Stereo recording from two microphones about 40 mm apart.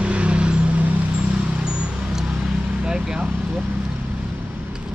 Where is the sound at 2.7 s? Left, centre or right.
Centre.